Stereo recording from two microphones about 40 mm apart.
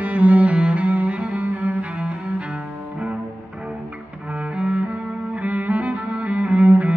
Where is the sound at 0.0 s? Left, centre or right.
Right.